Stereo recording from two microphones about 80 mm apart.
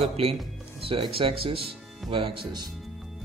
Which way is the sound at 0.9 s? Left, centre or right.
Right.